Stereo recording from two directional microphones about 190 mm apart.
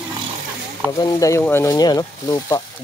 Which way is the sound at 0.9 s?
20° left (ahead or behind).